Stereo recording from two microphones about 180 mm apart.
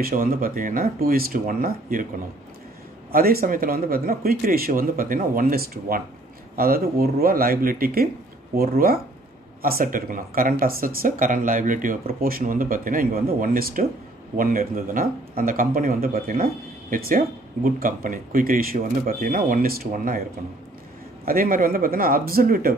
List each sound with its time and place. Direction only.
0.0 s speech: 50° right (ahead or behind)
3.1 s speech: 55° right (ahead or behind)
17.6 s speech: 50° right (ahead or behind)
21.3 s speech: 50° right (ahead or behind)